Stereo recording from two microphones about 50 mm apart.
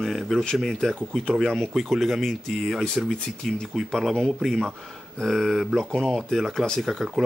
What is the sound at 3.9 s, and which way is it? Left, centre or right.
Speech, centre.